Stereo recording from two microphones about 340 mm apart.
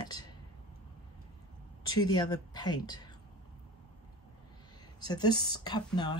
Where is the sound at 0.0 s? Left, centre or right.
Centre.